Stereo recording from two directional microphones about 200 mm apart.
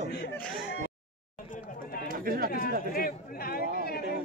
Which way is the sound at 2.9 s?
45° left (ahead or behind).